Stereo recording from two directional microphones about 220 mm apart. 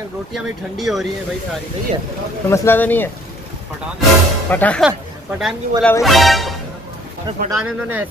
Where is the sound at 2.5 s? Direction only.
10° left (ahead or behind).